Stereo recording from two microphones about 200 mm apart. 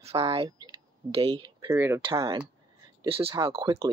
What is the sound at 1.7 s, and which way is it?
Speech, 10° right (ahead or behind).